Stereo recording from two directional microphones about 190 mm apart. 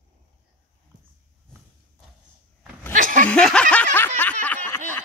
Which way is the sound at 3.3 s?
5° left (ahead or behind).